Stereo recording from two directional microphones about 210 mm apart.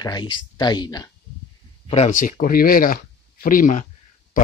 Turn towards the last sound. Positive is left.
turn(degrees=40)  # may be behind; listen again after turning